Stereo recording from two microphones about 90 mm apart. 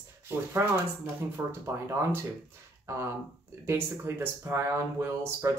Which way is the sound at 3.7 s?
25° right (ahead or behind).